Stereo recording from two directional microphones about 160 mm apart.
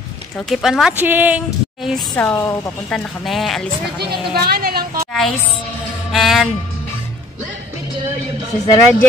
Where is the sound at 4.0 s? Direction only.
75° right (ahead or behind).